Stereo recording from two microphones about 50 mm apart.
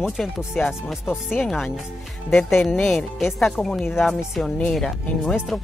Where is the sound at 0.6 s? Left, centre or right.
Centre.